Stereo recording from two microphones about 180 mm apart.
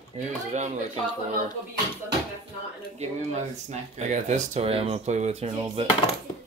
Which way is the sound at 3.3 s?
40° right (ahead or behind).